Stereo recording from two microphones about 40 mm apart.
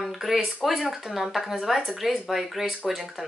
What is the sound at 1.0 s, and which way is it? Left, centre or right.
Speech, centre.